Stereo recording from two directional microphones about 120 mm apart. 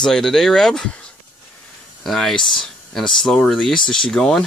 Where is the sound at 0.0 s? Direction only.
5° left (ahead or behind).